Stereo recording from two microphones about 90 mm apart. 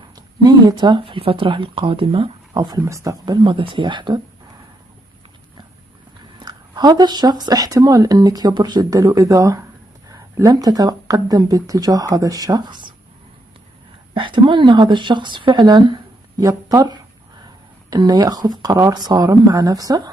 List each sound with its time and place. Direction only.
0.4 s speech: 50° right (ahead or behind); by 2.3 s 85° right
2.5 s speech: 50° right (ahead or behind)
2.8 s speech: 35° right (ahead or behind)
3.3 s speech: 70° right (ahead or behind)
6.4 s speech: 50° right (ahead or behind)
14.1 s speech: 65° right (ahead or behind); by 20.1 s 45° right (ahead or behind)